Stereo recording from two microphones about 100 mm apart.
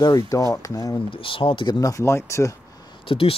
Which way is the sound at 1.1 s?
60° left (ahead or behind).